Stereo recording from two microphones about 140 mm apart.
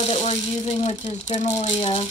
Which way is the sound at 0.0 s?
50° left (ahead or behind).